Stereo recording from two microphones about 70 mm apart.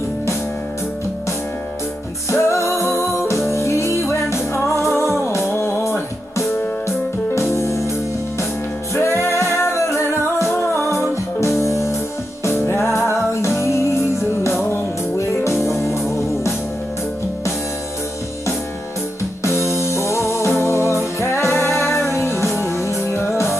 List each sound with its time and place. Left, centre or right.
2.3 s music: left
8.9 s music: left
19.4 s music: left